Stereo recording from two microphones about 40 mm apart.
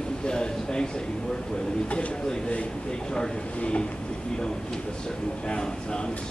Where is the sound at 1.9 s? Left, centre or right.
Left.